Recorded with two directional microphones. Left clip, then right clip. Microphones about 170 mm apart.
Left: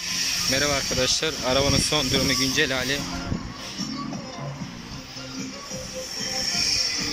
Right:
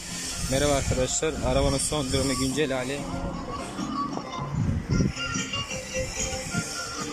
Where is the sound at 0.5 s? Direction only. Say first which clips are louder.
Right 2 dB; 15° right (ahead or behind).